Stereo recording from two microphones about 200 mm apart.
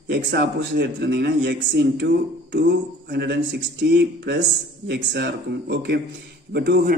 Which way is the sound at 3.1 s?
55° right (ahead or behind).